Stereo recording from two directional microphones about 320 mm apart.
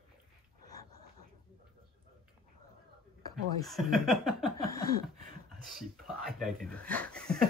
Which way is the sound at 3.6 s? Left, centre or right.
Centre.